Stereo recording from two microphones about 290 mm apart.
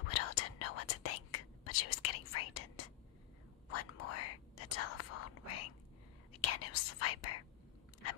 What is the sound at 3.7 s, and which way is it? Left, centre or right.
Whispering, left.